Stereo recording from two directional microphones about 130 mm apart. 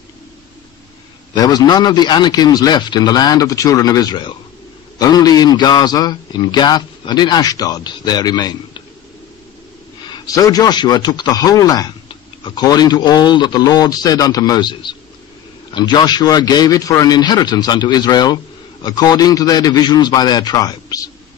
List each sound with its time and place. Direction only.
1.3 s a man's voice: 30° left (ahead or behind)
10.1 s a man's voice: 30° left (ahead or behind)